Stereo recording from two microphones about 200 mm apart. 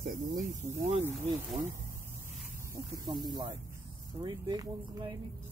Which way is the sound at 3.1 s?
20° right (ahead or behind).